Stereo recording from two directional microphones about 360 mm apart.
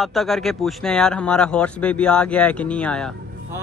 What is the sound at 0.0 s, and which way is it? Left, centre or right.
Speech, centre.